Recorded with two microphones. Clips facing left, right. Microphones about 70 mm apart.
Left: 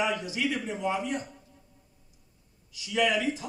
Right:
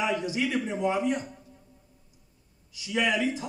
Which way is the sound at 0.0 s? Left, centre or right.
Right.